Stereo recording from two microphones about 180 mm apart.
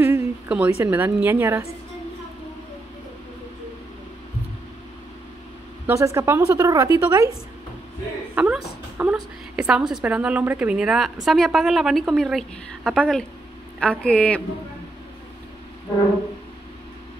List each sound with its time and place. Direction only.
0.0 s a woman's voice: 10° right (ahead or behind)
5.9 s a woman's voice: 15° right (ahead or behind)
8.4 s a woman's voice: 5° right (ahead or behind)